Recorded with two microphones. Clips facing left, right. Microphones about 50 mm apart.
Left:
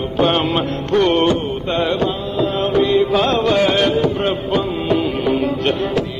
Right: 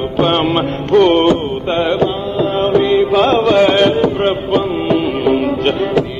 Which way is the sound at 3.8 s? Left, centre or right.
Centre.